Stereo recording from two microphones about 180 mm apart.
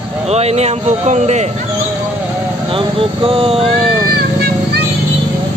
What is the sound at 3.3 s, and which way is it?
Speech, 30° right (ahead or behind).